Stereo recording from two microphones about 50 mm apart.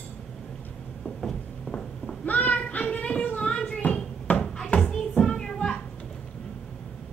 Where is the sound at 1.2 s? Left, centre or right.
Centre.